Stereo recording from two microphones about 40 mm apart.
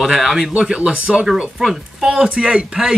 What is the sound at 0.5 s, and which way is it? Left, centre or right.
Speech, right.